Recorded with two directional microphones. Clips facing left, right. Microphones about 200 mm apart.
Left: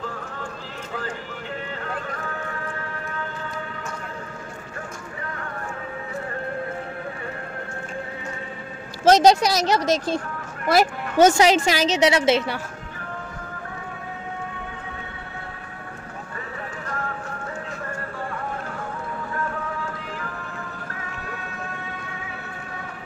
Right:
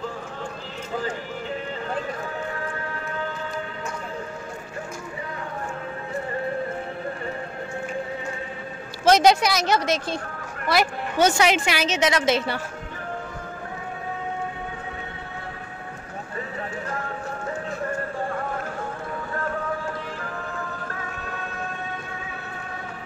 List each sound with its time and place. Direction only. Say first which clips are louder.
9.0 s a woman's voice: left 2 dB; 40° left (ahead or behind)